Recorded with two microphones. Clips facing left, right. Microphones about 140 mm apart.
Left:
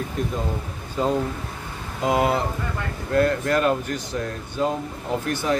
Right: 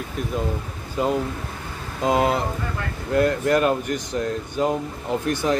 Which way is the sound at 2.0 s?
20° right (ahead or behind).